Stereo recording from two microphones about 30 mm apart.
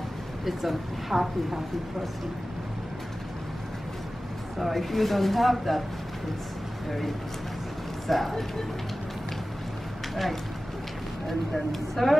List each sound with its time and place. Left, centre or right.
0.5 s speech: centre
4.6 s speech: centre
8.1 s speech: centre
11.7 s speech: centre